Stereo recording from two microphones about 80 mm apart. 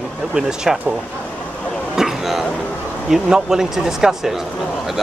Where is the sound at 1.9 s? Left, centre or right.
Centre.